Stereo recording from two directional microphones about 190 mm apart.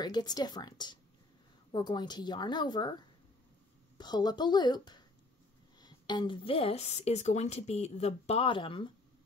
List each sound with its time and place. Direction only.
0.0 s speech: 20° left (ahead or behind)